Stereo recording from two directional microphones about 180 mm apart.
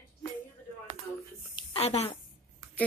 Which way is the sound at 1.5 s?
30° left (ahead or behind).